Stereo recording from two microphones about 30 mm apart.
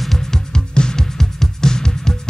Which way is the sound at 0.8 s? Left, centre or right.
Left.